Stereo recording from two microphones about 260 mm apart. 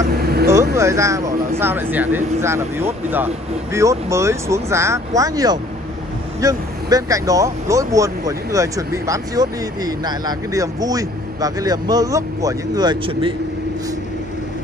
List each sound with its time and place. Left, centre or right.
0.0 s vehicle: right
0.5 s vehicle: centre
1.6 s speech: centre